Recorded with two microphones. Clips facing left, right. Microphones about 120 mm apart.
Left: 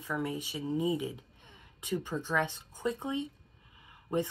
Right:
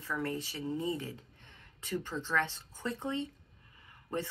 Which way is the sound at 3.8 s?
15° left (ahead or behind).